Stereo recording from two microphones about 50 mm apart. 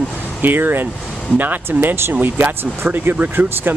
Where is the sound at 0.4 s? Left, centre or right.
Right.